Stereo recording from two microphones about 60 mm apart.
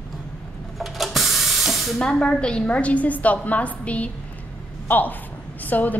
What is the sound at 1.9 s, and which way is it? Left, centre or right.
A woman's voice, centre.